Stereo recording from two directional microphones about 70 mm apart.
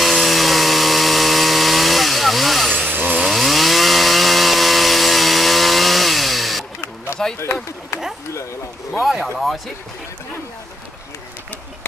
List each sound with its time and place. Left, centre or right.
0.0 s chainsaw: centre
2.7 s chainsaw: right
3.2 s chainsaw: centre
7.2 s a sound: centre
9.0 s speech: centre